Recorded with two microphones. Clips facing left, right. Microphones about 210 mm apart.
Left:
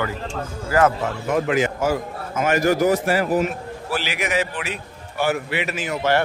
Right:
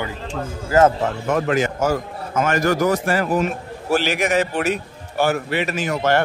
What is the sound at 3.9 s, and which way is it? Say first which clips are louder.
A man's voice: right 6 dB; 45° right (ahead or behind).